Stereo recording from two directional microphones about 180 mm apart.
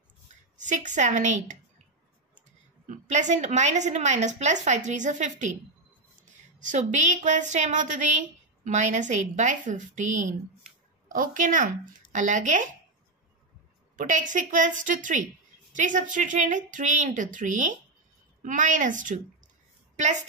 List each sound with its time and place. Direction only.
0.7 s a woman's voice: 40° right (ahead or behind)
2.9 s a woman's voice: 40° right (ahead or behind)
6.6 s a woman's voice: 45° right (ahead or behind)
13.9 s a woman's voice: 45° right (ahead or behind)